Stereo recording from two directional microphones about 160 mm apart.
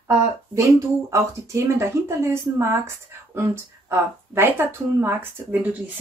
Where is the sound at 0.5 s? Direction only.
20° right (ahead or behind).